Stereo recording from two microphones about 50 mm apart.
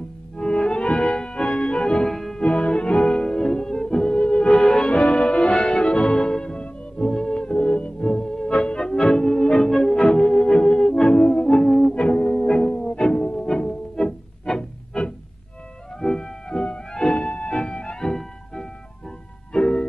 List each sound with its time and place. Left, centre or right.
0.4 s organ: centre
2.1 s music: centre
2.4 s music: left